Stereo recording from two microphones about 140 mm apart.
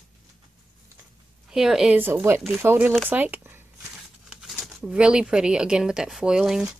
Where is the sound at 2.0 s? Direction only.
15° right (ahead or behind).